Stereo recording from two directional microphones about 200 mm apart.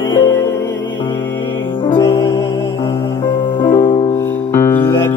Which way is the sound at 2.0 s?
15° left (ahead or behind).